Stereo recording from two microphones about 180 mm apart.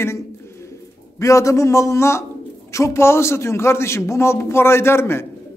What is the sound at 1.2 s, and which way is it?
Speech, 15° left (ahead or behind).